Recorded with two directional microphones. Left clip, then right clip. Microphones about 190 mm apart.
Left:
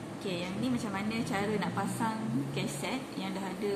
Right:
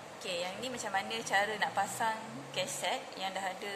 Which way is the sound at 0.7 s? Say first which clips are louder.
Even; 45° right (ahead or behind).